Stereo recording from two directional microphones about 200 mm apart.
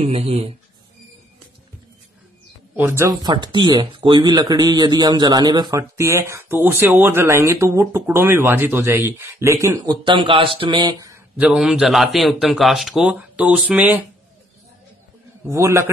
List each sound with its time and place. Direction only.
0.0 s speech: 30° right (ahead or behind)
2.7 s speech: 10° right (ahead or behind)
15.4 s speech: 15° right (ahead or behind)